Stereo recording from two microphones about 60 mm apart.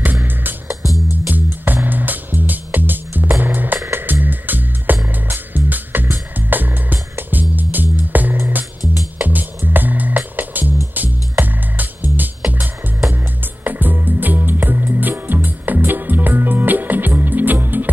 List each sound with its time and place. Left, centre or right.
0.0 s music: right